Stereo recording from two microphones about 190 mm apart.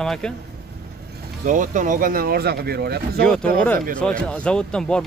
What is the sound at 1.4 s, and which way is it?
Speech, 40° right (ahead or behind).